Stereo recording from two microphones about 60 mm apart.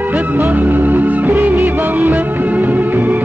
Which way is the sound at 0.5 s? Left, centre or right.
Right.